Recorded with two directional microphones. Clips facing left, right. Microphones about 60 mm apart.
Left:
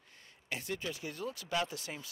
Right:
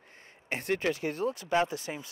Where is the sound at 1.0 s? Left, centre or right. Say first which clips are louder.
Right 9 dB; right.